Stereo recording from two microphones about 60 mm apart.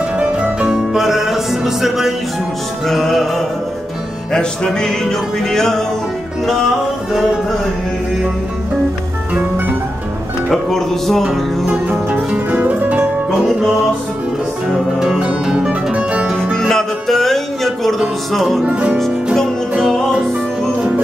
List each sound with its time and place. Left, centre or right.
0.2 s music: centre
0.7 s music: centre
2.9 s music: centre
10.5 s music: centre
11.2 s music: centre
14.7 s music: centre
16.5 s music: centre
18.7 s music: right